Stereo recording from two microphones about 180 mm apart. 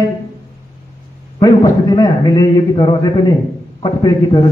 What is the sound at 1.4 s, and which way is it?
A man's voice, 20° left (ahead or behind).